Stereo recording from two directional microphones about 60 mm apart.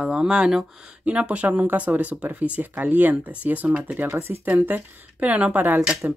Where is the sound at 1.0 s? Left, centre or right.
Right.